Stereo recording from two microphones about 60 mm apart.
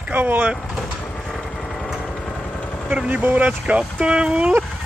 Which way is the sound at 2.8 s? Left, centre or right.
Centre.